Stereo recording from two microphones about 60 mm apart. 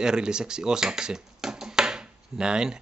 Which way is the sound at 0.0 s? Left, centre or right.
Centre.